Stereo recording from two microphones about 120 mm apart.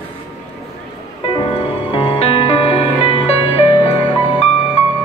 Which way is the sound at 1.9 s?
55° left (ahead or behind).